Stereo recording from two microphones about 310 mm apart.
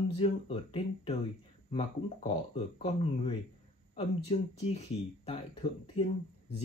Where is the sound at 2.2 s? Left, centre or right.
Centre.